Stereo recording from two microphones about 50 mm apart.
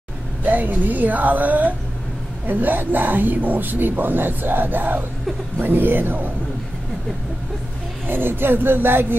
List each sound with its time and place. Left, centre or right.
0.4 s a woman's voice: right
8.1 s speech: right